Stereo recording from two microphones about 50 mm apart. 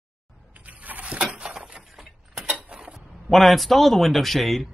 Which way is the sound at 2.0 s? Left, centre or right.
Centre.